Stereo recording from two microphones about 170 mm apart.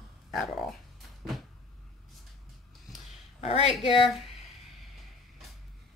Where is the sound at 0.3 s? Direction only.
Centre (ahead or behind).